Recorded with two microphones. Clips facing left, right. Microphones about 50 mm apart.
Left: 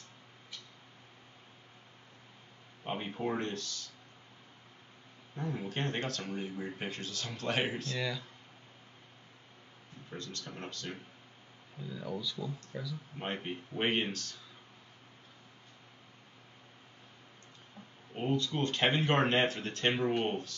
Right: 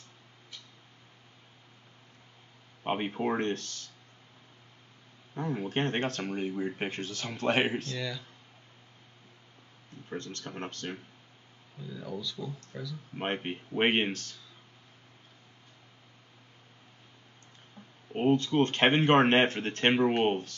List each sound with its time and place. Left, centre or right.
2.8 s a sound: right
3.2 s speech: right
5.3 s speech: right
7.9 s speech: centre
10.0 s speech: right
11.9 s speech: centre
13.2 s speech: right
17.8 s a sound: centre
18.1 s speech: right